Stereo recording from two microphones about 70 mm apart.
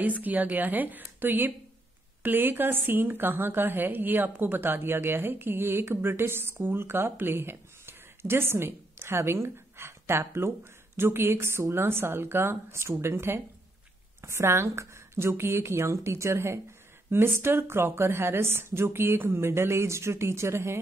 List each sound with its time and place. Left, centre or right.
0.0 s a woman's voice: right